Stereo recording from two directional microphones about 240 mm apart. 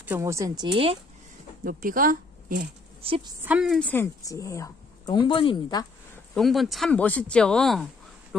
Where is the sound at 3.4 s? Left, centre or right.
Centre.